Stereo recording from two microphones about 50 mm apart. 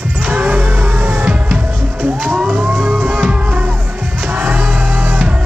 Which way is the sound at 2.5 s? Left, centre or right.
Right.